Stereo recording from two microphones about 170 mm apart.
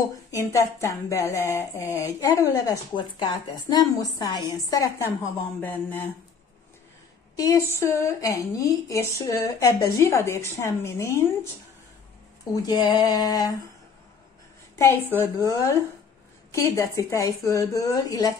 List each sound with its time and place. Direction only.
0.3 s a woman's voice: 20° left (ahead or behind)
7.3 s a woman's voice: 20° left (ahead or behind)
12.6 s a woman's voice: 25° left (ahead or behind)
15.1 s a woman's voice: 15° left (ahead or behind)